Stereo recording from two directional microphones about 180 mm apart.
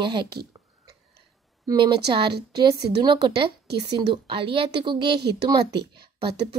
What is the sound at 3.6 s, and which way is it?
Speech, 65° right (ahead or behind).